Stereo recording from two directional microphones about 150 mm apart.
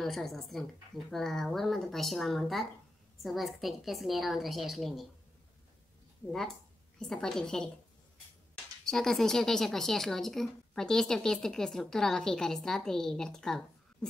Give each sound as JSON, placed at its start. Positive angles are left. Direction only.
{"t": 0.0, "sound": "speech", "side_deg": 0}
{"t": 6.2, "sound": "speech", "side_deg": 5}
{"t": 8.8, "sound": "speech", "side_deg": 5}